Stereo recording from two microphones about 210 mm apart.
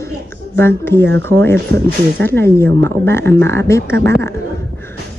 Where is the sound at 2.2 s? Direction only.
10° left (ahead or behind).